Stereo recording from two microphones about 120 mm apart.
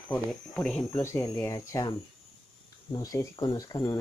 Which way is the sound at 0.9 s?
25° left (ahead or behind).